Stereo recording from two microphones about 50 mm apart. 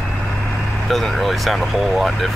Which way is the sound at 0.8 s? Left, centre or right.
Centre.